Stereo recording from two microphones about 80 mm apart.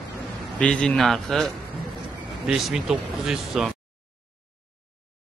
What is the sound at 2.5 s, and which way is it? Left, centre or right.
Speech, centre.